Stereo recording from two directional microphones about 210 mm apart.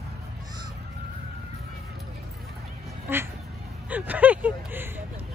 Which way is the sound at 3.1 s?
10° right (ahead or behind).